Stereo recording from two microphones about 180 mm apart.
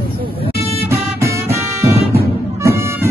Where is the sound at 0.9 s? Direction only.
15° right (ahead or behind).